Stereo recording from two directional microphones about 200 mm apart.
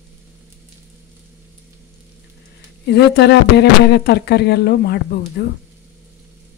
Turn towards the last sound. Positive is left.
turn(degrees=55)  # may be behind; listen again after turning